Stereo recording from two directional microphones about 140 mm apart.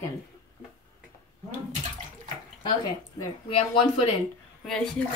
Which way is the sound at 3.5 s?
45° left (ahead or behind).